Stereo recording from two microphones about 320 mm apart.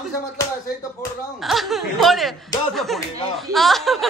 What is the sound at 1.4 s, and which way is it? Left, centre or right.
Speech, centre.